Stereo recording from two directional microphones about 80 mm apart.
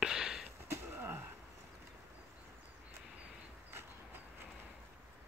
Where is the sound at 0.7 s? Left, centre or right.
Right.